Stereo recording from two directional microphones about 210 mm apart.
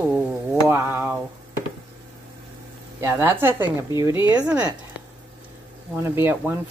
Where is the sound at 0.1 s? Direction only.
10° right (ahead or behind).